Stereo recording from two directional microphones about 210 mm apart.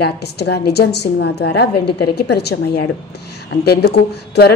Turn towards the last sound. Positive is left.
turn(degrees=50)  # may be behind; listen again after turning